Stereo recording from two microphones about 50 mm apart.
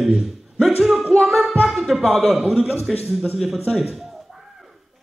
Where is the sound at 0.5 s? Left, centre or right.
Centre.